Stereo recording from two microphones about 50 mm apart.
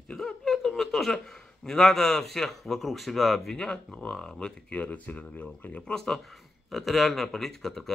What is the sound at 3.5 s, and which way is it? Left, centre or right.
Speech, centre.